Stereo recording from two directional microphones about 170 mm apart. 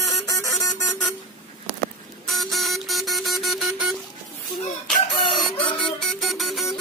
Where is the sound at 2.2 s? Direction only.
Centre (ahead or behind).